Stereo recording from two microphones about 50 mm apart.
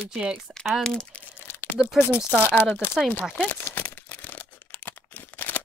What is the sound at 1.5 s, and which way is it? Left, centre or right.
Crumpling, left.